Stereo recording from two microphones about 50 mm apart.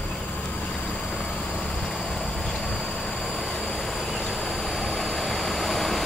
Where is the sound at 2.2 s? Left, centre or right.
Centre.